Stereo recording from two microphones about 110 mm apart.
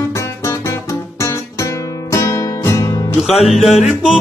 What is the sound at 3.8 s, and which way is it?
Music, 5° right (ahead or behind).